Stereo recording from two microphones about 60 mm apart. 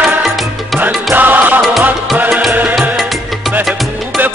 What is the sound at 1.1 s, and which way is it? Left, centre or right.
Music, right.